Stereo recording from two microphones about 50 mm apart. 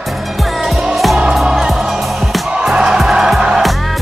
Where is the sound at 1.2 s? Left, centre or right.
Centre.